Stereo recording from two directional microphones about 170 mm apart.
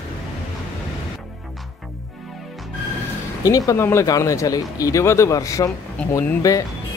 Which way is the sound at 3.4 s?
20° left (ahead or behind).